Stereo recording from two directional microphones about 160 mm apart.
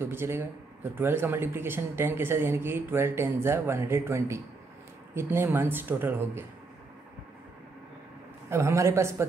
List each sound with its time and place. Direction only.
0.0 s speech: 15° right (ahead or behind)
8.5 s speech: 15° right (ahead or behind)